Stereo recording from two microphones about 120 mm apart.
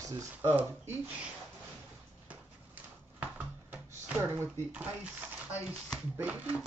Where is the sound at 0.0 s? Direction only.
30° right (ahead or behind).